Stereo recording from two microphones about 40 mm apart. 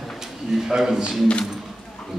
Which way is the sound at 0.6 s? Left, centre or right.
Centre.